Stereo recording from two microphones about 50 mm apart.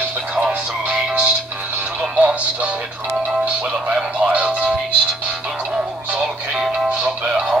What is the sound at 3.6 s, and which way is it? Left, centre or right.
Music, centre.